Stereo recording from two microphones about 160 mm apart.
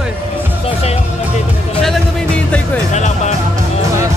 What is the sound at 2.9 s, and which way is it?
Speech, 45° left (ahead or behind).